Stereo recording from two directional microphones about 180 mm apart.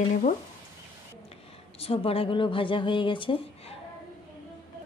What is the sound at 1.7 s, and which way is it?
A woman's voice, 30° left (ahead or behind).